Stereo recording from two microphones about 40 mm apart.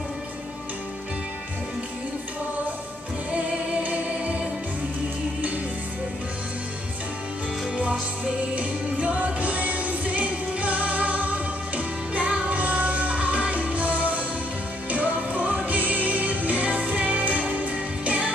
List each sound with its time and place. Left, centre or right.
3.8 s choir: right
8.5 s music: right